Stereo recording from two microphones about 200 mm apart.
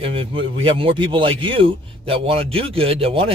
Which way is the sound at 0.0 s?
25° right (ahead or behind).